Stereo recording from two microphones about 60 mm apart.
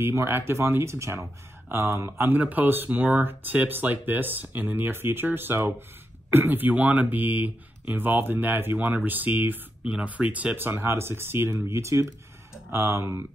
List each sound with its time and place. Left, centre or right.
0.0 s speech: right